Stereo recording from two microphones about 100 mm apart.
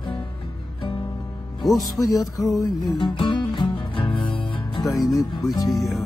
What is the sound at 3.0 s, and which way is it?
Music, 50° left (ahead or behind).